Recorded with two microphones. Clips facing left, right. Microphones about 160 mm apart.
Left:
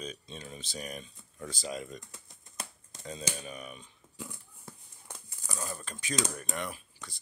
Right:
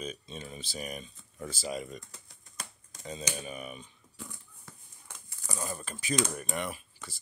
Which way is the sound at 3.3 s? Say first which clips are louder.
Right 3 dB; 5° right (ahead or behind).